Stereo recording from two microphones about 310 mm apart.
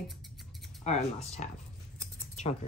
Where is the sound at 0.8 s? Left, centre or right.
Left.